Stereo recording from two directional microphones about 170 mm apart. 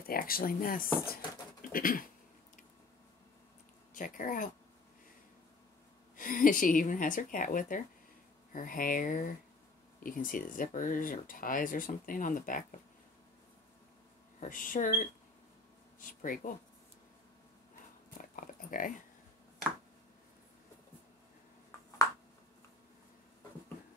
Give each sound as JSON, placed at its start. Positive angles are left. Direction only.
{"t": 0.1, "sound": "speech", "side_deg": 60}
{"t": 3.9, "sound": "speech", "side_deg": 50}
{"t": 6.1, "sound": "speech", "side_deg": 50}
{"t": 14.4, "sound": "speech", "side_deg": 55}
{"t": 18.1, "sound": "a sound", "side_deg": 50}